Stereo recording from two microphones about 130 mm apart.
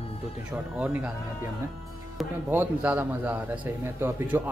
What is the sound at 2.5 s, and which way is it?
A man's voice, 10° right (ahead or behind).